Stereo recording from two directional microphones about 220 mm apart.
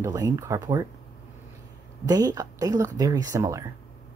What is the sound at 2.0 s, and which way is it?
Speech, 15° right (ahead or behind).